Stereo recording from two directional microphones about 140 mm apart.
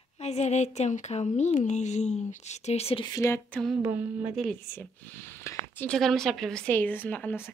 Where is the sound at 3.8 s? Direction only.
15° right (ahead or behind).